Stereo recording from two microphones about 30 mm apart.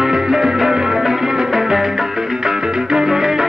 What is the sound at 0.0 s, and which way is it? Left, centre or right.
Music, centre.